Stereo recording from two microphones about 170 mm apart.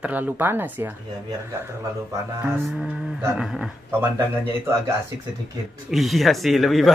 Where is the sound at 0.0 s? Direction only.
10° right (ahead or behind).